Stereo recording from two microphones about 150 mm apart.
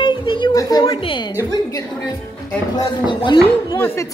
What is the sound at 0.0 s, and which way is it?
Music, 30° left (ahead or behind).